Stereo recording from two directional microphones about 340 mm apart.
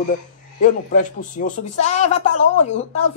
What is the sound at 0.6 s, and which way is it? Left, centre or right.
Speech, left.